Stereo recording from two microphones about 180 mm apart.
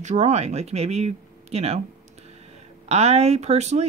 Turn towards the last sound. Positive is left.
turn(degrees=-40)  # may be behind; listen again after turning